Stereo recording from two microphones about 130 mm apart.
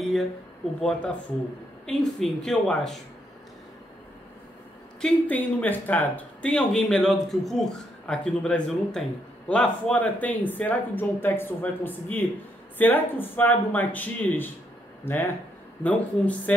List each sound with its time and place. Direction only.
0.7 s speech: 5° left (ahead or behind)
5.0 s speech: 10° left (ahead or behind)